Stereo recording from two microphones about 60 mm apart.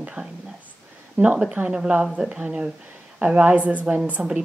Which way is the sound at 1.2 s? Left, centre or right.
Right.